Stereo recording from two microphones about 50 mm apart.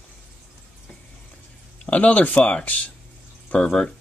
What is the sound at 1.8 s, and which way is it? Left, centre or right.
Speech, left.